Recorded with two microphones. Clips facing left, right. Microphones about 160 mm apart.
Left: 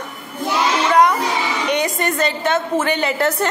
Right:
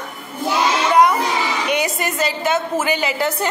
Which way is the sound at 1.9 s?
5° right (ahead or behind).